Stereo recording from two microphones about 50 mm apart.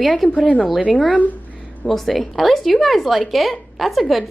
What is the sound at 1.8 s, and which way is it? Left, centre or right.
A woman's voice, centre.